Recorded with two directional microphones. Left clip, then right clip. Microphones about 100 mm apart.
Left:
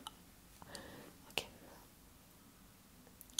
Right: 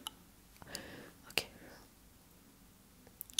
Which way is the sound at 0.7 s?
30° right (ahead or behind).